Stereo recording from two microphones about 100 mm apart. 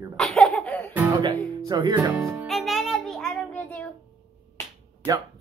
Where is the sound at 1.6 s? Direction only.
40° right (ahead or behind).